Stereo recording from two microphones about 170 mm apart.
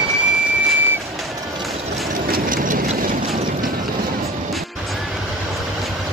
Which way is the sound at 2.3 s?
50° right (ahead or behind).